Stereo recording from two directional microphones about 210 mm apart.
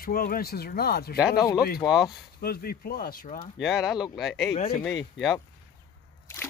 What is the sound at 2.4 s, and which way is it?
Speech, 45° left (ahead or behind).